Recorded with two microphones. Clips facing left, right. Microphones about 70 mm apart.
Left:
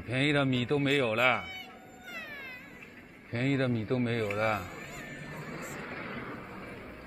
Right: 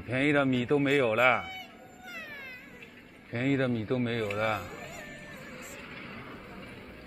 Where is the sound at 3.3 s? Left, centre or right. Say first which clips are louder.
Right 1 dB; centre.